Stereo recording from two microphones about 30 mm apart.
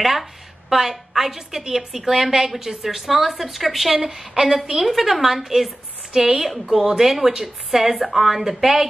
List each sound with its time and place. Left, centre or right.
0.0 s a woman's voice: centre
3.1 s a woman's voice: centre